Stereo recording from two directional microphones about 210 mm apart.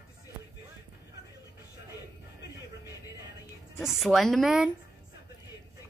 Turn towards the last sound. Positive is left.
turn(degrees=0)  # may be behind; listen again after turning